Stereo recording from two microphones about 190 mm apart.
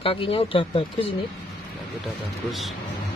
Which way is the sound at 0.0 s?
30° left (ahead or behind).